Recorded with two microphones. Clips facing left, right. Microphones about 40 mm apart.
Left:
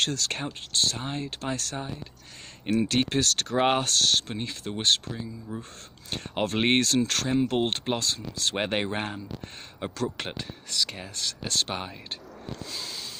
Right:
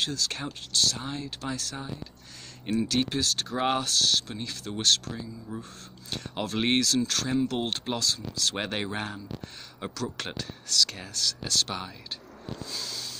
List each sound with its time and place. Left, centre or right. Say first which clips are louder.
0.0 s speech: left 2 dB; left
0.5 s speech: right 2 dB; left
2.8 s speech: left 2 dB; left
3.5 s speech: left 4 dB; left
3.8 s speech: left 2 dB; left
5.5 s speech: left 1 dB; centre
6.0 s speech: left 4 dB; left
7.2 s speech: left 3 dB; left
11.1 s speech: right 1 dB; left
12.7 s a sound: right 1 dB; left